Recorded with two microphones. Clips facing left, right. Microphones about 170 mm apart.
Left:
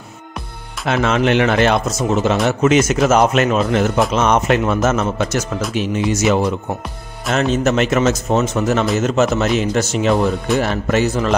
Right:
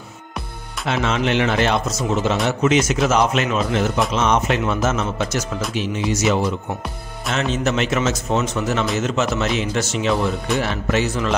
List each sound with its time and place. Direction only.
0.8 s speech: 55° left (ahead or behind)